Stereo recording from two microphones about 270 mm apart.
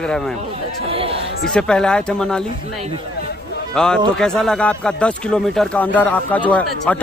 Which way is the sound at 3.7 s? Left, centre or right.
Centre.